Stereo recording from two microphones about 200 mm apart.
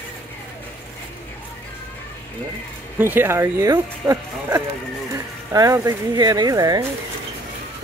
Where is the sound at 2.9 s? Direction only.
10° right (ahead or behind).